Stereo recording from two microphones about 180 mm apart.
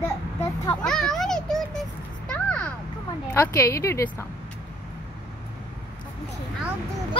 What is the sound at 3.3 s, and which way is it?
Speech, 15° left (ahead or behind).